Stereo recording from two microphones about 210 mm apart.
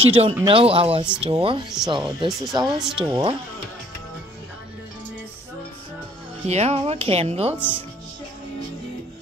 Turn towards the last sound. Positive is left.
turn(degrees=10)  # may be behind; listen again after turning